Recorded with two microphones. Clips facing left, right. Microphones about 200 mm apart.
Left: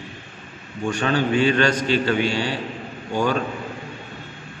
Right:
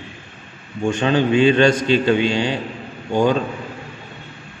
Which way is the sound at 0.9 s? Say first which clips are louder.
Right 4 dB; 20° right (ahead or behind).